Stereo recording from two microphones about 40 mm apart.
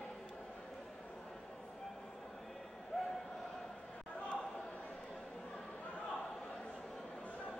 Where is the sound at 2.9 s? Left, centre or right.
Centre.